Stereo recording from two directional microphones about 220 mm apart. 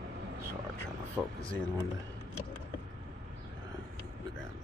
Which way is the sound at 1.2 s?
Centre (ahead or behind).